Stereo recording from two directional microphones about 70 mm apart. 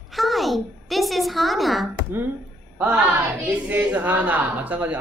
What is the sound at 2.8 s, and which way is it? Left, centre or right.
A woman's voice, right.